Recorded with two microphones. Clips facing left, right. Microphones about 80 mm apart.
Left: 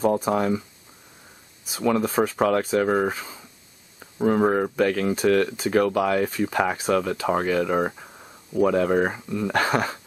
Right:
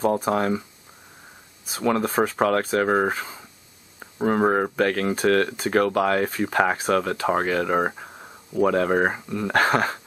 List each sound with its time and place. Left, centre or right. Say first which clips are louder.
0.2 s speech: even; right
1.7 s speech: even; right
4.0 s a sound: left 1 dB; right
4.4 s speech: right 2 dB; right
4.7 s speech: even; right
7.7 s speech: right 1 dB; right
8.6 s speech: even; right